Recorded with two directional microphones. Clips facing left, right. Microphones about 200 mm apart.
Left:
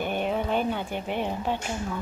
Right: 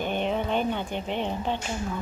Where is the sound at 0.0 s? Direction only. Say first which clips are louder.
Even; 10° left (ahead or behind).